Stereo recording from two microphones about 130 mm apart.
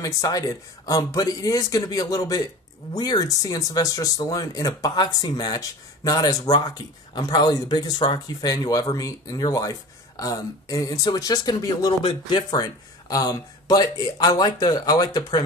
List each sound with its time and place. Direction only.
0.0 s speech: 25° left (ahead or behind)